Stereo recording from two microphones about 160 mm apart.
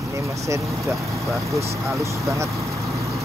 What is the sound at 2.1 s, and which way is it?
Vehicle, 20° right (ahead or behind).